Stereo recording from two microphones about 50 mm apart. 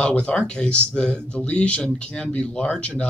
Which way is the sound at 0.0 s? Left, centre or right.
Left.